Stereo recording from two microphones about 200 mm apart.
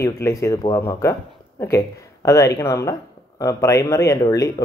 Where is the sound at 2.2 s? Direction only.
15° left (ahead or behind).